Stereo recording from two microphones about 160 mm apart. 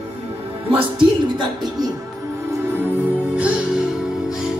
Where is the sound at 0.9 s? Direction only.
30° right (ahead or behind).